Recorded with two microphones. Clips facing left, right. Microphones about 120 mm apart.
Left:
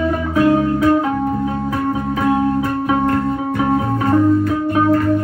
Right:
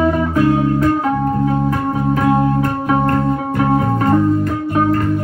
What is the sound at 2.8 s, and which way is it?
Music, centre (ahead or behind).